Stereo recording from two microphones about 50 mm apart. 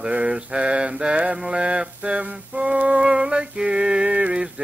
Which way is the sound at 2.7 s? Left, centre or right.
Right.